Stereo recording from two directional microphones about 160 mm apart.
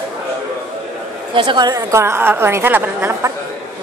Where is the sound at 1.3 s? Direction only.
25° right (ahead or behind).